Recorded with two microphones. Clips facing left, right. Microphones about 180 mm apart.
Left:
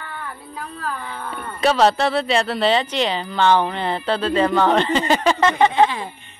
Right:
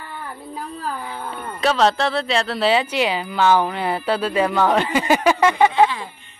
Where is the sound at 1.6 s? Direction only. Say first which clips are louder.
Left 2 dB; 5° left (ahead or behind).